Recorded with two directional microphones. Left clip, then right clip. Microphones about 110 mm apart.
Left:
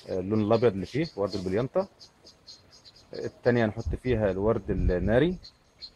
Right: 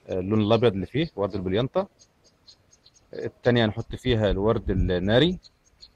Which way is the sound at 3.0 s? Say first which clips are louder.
Right 2 dB; 25° right (ahead or behind).